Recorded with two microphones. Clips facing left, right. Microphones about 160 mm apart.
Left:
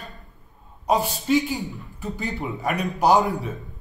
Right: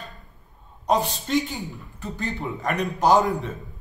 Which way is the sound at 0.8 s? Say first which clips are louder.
Left 2 dB; 5° left (ahead or behind).